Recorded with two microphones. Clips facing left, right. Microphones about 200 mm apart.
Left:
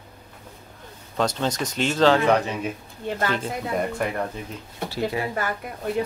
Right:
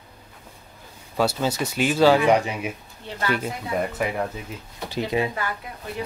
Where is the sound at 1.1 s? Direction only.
5° right (ahead or behind).